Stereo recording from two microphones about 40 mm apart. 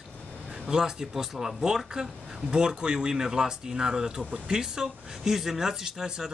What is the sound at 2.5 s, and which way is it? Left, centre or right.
Speech, right.